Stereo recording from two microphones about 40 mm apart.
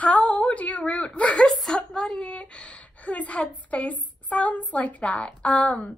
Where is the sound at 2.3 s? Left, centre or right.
Left.